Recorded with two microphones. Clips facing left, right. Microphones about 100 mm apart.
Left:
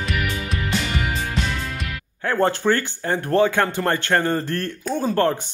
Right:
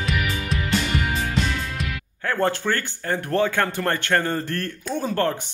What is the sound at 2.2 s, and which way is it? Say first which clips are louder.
Speech: left 3 dB; 25° left (ahead or behind).